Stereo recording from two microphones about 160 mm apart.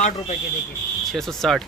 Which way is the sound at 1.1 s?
Centre (ahead or behind).